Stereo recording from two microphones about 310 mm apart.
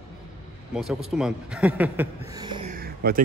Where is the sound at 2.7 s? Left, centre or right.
Right.